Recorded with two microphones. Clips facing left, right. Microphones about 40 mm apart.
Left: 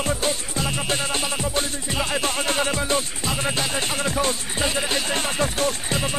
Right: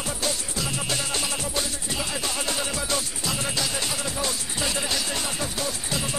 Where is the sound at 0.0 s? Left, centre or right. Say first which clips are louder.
Left 5 dB; left.